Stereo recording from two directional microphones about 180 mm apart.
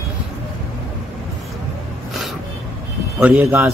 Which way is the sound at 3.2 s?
10° right (ahead or behind).